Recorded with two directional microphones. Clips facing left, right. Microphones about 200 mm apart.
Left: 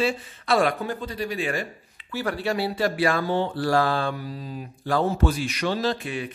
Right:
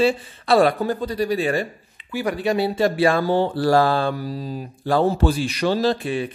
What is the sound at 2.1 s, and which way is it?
Speech, 15° right (ahead or behind).